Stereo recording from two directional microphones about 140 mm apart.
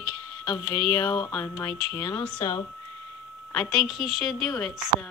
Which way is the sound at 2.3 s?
40° left (ahead or behind).